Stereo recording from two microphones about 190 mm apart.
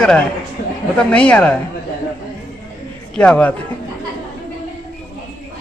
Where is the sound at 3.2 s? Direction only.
5° left (ahead or behind).